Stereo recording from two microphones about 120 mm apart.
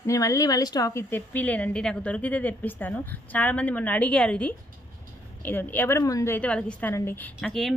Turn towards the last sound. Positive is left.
turn(degrees=5)  # may be behind; listen again after turning